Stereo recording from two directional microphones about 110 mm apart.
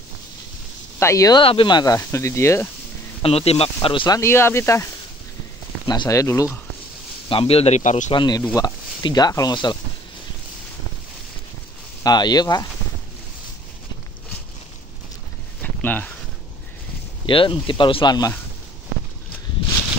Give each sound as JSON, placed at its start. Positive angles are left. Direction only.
{"t": 0.9, "sound": "speech", "side_deg": 30}
{"t": 1.4, "sound": "speech", "side_deg": 50}
{"t": 2.0, "sound": "speech", "side_deg": 25}
{"t": 3.2, "sound": "speech", "side_deg": 65}
{"t": 4.1, "sound": "speech", "side_deg": 25}
{"t": 5.9, "sound": "speech", "side_deg": 35}
{"t": 7.2, "sound": "speech", "side_deg": 55}
{"t": 8.1, "sound": "speech", "side_deg": 45}
{"t": 12.0, "sound": "speech", "side_deg": 40}
{"t": 15.6, "sound": "a sound", "side_deg": 15}
{"t": 17.3, "sound": "speech", "side_deg": 55}